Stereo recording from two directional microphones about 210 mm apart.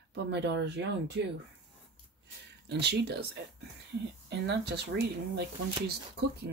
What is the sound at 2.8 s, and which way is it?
Speech, 50° right (ahead or behind).